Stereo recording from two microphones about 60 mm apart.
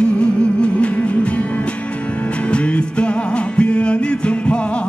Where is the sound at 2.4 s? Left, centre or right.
Centre.